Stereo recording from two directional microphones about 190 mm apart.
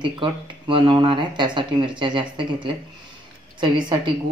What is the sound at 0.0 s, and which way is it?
Speech, 25° right (ahead or behind).